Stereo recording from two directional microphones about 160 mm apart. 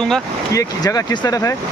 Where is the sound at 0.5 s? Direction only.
25° left (ahead or behind).